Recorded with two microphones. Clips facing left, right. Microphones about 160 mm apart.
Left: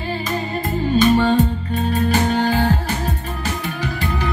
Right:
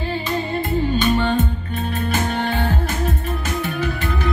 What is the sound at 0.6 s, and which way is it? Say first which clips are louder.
Music: left 4 dB; 40° left (ahead or behind).